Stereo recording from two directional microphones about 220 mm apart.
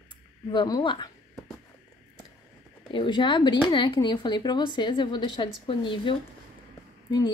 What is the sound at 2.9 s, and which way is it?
A woman's voice, 20° left (ahead or behind).